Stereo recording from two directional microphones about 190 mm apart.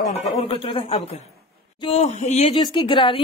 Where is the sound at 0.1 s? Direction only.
35° left (ahead or behind).